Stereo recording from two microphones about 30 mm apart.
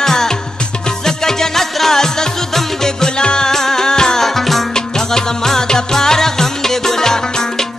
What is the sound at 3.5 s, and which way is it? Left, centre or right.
Music, centre.